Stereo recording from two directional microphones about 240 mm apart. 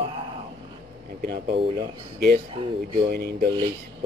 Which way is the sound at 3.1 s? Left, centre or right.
Right.